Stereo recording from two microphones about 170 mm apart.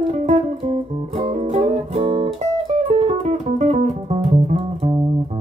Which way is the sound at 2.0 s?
25° right (ahead or behind).